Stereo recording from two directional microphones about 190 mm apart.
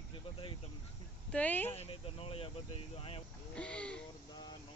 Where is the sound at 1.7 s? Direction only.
30° left (ahead or behind).